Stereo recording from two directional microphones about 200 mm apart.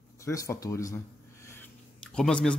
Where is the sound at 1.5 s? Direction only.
5° left (ahead or behind).